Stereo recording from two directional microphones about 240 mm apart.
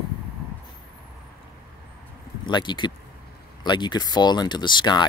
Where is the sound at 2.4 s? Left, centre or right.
Centre.